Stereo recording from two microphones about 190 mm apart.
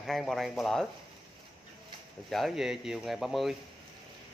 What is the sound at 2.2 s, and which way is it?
Speech, centre (ahead or behind).